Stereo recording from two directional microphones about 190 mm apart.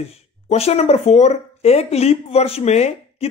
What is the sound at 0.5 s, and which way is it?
Speech, 35° left (ahead or behind).